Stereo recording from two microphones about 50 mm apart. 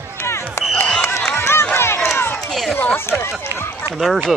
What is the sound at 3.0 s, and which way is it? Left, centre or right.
Run, left.